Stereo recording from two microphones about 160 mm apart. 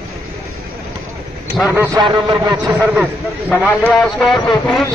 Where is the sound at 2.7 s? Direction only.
10° right (ahead or behind).